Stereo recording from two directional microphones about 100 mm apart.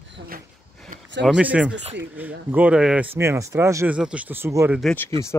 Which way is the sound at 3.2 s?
30° right (ahead or behind).